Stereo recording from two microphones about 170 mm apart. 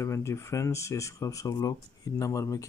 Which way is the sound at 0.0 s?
15° left (ahead or behind).